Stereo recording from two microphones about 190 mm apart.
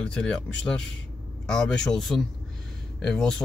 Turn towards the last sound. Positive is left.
turn(degrees=5)  # may be behind; listen again after turning